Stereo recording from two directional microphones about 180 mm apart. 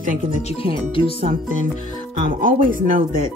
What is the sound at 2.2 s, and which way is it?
Speech, 50° right (ahead or behind).